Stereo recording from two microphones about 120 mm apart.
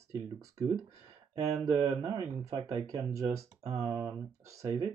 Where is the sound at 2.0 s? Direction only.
45° right (ahead or behind).